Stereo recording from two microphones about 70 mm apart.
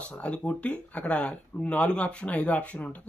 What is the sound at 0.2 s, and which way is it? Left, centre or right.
Speech, centre.